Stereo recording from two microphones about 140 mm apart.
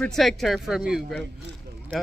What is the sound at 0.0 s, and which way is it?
Speech, centre (ahead or behind).